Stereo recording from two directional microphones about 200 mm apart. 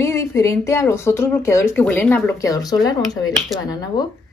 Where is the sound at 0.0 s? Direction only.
15° left (ahead or behind).